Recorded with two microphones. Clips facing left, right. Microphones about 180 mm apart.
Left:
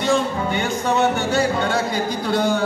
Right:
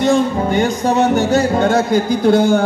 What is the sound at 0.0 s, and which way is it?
Music, 40° right (ahead or behind).